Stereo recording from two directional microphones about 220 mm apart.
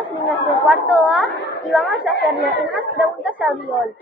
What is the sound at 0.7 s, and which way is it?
Chatter, centre (ahead or behind).